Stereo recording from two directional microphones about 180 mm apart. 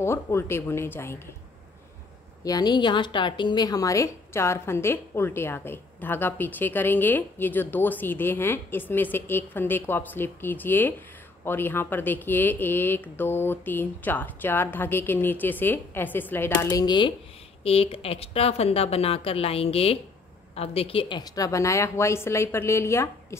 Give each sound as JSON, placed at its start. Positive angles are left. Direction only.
{"t": 0.0, "sound": "a woman's voice", "side_deg": 15}
{"t": 2.4, "sound": "a woman's voice", "side_deg": 20}